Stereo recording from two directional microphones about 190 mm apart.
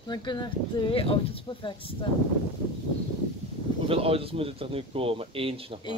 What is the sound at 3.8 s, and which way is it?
Speech, 30° right (ahead or behind).